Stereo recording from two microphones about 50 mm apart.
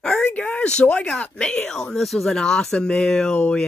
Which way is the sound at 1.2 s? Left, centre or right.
Centre.